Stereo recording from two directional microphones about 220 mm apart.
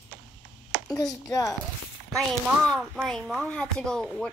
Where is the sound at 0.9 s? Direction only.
Centre (ahead or behind).